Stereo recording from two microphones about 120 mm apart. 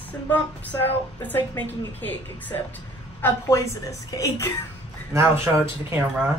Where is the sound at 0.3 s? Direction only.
15° left (ahead or behind).